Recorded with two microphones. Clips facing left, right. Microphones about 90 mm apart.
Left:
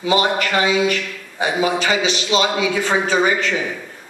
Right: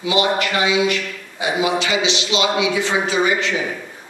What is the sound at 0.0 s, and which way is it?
A man's voice, 40° left (ahead or behind).